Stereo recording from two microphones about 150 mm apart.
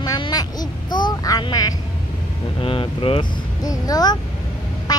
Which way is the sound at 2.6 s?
35° left (ahead or behind).